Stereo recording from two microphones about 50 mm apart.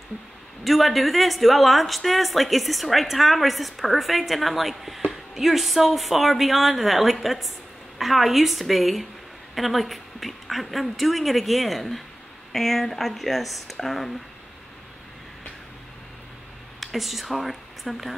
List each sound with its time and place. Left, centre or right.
0.7 s a woman's voice: centre
16.8 s speech: centre